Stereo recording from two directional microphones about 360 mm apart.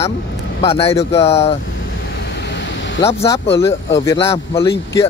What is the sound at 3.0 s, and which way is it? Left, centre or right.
Speech, centre.